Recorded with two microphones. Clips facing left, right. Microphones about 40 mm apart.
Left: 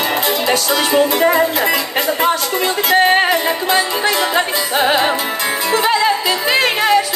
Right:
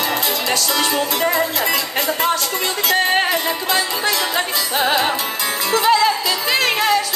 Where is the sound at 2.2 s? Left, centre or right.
Centre.